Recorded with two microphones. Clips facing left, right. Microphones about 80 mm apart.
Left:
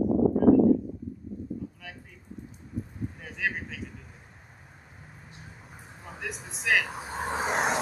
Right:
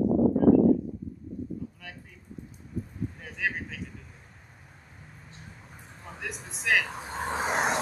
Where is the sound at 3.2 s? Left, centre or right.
Centre.